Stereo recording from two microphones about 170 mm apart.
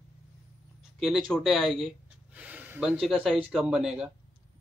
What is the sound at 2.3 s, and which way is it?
A man's voice, 10° right (ahead or behind).